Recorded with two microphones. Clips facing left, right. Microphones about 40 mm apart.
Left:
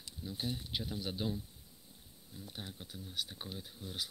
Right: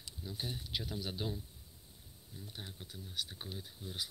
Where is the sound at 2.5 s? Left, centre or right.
Centre.